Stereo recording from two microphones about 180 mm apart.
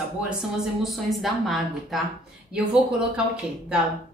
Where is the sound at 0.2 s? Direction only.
Centre (ahead or behind).